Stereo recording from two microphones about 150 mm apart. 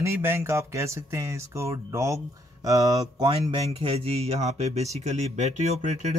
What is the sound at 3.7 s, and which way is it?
Speech, 35° right (ahead or behind).